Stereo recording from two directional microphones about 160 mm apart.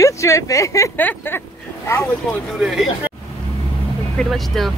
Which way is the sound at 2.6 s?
5° right (ahead or behind).